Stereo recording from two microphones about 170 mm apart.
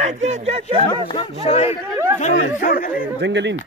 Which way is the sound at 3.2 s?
90° right.